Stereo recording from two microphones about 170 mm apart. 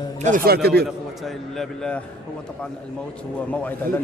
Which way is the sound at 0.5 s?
70° right (ahead or behind).